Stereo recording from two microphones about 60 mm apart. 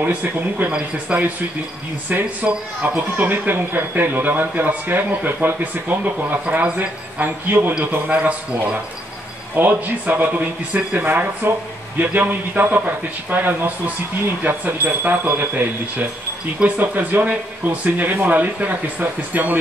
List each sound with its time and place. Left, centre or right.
0.0 s speech: right
0.7 s speech: centre
2.0 s speech: right
7.2 s speech: right
8.1 s speech: centre
9.6 s speech: right
16.5 s speech: right